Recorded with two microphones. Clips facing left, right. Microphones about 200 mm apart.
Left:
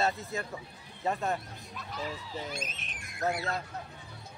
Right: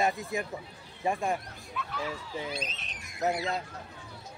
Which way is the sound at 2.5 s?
50° left (ahead or behind).